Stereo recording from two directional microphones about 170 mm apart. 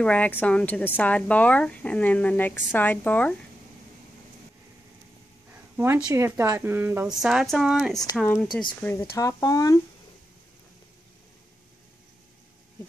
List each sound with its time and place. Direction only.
0.0 s a woman's voice: 10° left (ahead or behind)
5.8 s a woman's voice: 10° right (ahead or behind); by 8.5 s 5° left (ahead or behind)
9.1 s speech: 15° left (ahead or behind)